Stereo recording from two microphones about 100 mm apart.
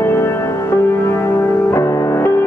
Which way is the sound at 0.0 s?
25° left (ahead or behind).